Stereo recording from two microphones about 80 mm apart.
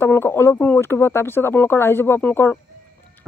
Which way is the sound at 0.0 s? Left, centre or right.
Left.